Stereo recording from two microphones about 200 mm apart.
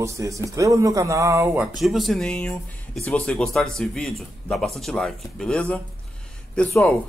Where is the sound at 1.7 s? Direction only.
Centre (ahead or behind).